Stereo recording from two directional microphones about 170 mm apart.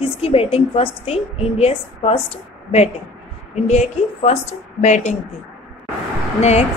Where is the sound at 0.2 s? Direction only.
35° left (ahead or behind).